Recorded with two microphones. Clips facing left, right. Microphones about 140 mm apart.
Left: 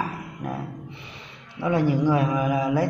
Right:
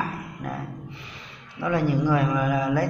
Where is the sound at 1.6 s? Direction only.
25° left (ahead or behind).